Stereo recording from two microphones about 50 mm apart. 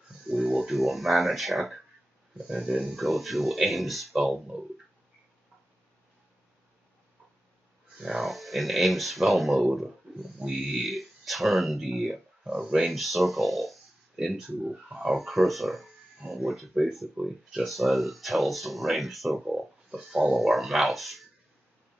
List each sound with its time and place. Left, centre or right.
0.3 s speech: centre
0.7 s speech: centre
2.6 s speech: centre
2.9 s speech: centre
8.0 s speech: centre
12.4 s speech: centre
13.0 s speech: centre
15.1 s speech: centre
19.5 s speech: centre